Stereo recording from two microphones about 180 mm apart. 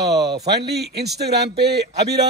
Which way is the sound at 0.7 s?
65° right (ahead or behind).